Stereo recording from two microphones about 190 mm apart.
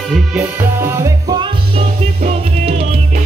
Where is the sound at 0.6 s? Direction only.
15° right (ahead or behind).